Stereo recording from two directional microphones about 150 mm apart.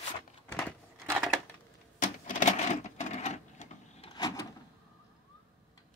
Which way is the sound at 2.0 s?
55° left (ahead or behind).